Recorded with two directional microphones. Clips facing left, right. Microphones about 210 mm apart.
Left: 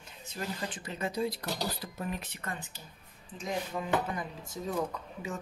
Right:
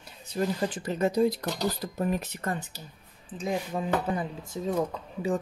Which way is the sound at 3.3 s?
30° right (ahead or behind).